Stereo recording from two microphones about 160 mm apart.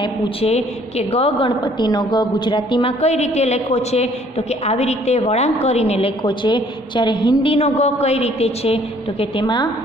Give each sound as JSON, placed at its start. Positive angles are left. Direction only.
{"t": 0.0, "sound": "a woman's voice", "side_deg": 40}
{"t": 3.0, "sound": "a woman's voice", "side_deg": 45}